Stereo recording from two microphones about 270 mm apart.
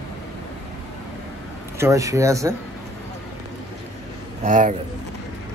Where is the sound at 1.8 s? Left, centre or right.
Centre.